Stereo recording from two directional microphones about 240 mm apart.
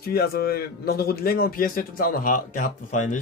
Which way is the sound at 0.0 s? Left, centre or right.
Left.